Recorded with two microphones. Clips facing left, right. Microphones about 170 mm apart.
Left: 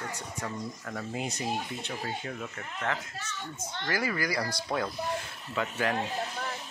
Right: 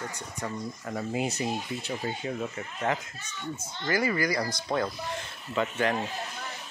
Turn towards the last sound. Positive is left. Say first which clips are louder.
# right 3 dB
turn(degrees=0)  # may be behind; listen again after turning